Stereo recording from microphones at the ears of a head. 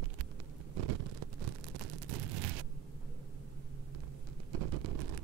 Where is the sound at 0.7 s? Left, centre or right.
Right.